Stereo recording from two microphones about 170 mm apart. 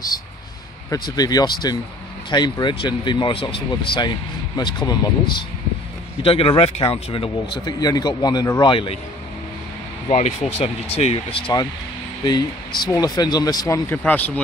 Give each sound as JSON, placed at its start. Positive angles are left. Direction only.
{"t": 1.1, "sound": "speech", "side_deg": 20}
{"t": 7.5, "sound": "speech", "side_deg": 25}
{"t": 10.0, "sound": "speech", "side_deg": 40}